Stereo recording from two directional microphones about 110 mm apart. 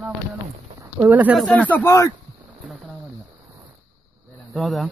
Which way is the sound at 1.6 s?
15° left (ahead or behind).